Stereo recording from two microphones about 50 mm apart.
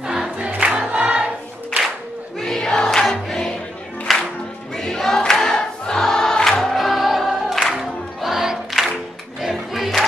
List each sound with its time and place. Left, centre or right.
0.0 s music: centre
0.4 s music: right
0.9 s choir: right
2.4 s music: centre
4.7 s choir: centre
6.6 s music: centre